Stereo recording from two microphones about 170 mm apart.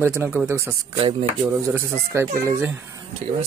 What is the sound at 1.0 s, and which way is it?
Speech, 35° right (ahead or behind).